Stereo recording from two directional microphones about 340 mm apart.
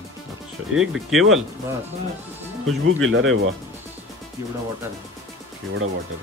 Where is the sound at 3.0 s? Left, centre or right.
Right.